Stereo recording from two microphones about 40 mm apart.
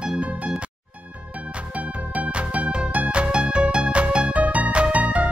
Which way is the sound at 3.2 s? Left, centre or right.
Right.